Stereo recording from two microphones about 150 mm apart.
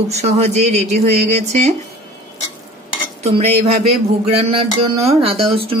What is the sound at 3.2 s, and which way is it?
Dishes, 45° right (ahead or behind).